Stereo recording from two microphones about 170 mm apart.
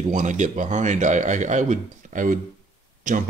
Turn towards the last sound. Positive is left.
turn(degrees=-50)  # may be behind; listen again after turning